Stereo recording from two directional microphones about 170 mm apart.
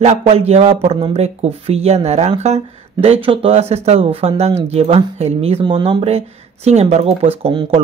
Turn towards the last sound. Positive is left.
turn(degrees=-30)  # may be behind; listen again after turning